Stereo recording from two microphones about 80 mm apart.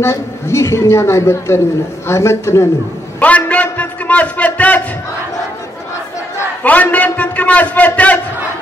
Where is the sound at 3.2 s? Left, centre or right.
Centre.